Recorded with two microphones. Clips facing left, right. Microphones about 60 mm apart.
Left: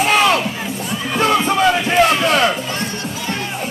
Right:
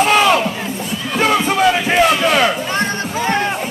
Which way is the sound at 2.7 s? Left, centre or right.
Right.